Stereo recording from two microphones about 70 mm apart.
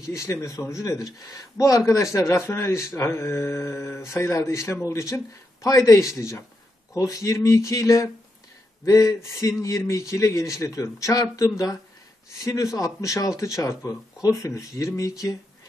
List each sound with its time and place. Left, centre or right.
0.0 s speech: left